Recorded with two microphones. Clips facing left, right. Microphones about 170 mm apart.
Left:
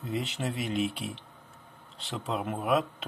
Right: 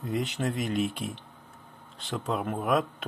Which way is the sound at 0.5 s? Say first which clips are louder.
Right 2 dB; 45° right (ahead or behind).